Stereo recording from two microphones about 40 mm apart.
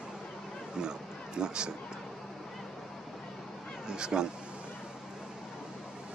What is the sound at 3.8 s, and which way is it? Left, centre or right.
Speech, centre.